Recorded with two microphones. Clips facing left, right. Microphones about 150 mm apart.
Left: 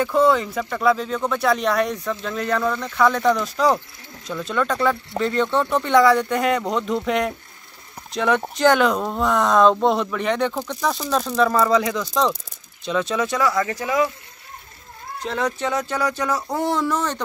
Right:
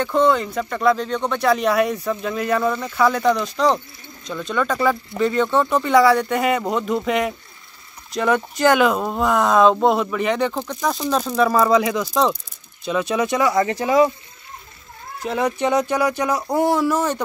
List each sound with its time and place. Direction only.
0.0 s speech: 5° left (ahead or behind); by 14.1 s 30° right (ahead or behind)
15.2 s speech: 10° right (ahead or behind)